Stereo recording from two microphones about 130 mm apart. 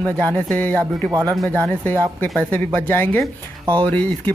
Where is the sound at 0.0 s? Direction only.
10° left (ahead or behind).